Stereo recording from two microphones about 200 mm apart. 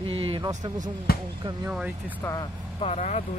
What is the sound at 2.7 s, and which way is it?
Speech, 30° left (ahead or behind).